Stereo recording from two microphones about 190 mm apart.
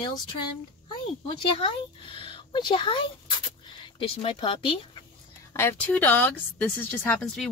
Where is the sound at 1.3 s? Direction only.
25° left (ahead or behind).